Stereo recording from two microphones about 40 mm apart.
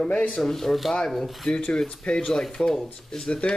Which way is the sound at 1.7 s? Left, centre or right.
Centre.